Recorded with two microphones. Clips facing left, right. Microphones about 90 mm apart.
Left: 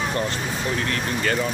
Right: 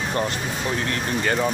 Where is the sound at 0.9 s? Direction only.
25° right (ahead or behind).